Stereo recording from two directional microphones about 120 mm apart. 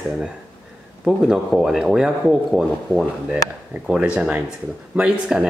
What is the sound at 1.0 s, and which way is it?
Speech, centre (ahead or behind).